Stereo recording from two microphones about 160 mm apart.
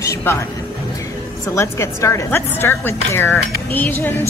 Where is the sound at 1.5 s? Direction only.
20° left (ahead or behind).